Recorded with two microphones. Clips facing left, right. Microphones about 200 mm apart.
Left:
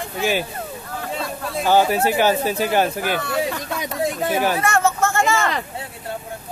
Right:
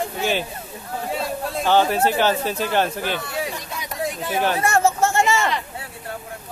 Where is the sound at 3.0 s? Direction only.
60° left (ahead or behind).